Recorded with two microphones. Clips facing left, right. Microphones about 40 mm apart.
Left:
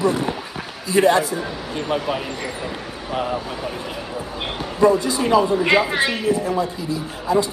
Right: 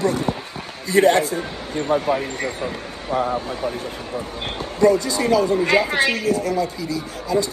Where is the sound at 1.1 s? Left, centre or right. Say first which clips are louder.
Even; right.